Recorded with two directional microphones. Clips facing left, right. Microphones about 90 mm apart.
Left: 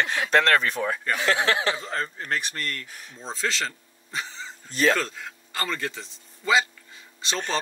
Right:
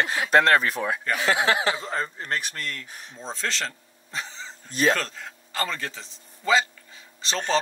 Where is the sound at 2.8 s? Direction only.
25° right (ahead or behind).